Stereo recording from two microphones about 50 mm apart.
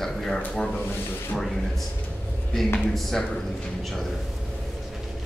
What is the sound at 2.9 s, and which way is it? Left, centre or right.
Speech, centre.